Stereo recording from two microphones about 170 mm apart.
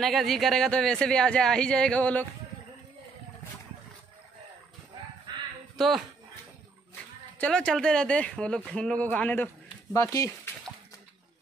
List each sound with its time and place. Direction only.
0.0 s speech: centre (ahead or behind)
5.3 s fowl: 25° right (ahead or behind)
5.8 s speech: centre (ahead or behind)
7.3 s speech: 5° left (ahead or behind)